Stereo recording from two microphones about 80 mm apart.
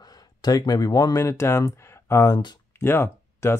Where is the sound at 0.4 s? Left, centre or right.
Left.